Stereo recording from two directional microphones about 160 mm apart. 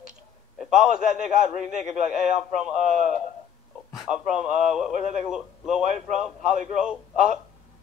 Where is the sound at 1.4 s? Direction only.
50° right (ahead or behind).